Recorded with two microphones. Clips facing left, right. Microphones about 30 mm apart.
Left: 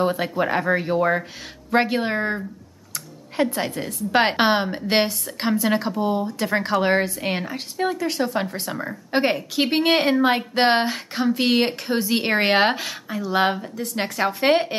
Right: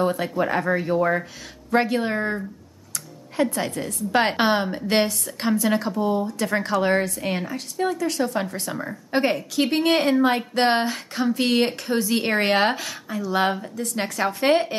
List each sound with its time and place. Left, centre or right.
0.0 s a woman's voice: left
13.6 s speech: centre
13.9 s speech: centre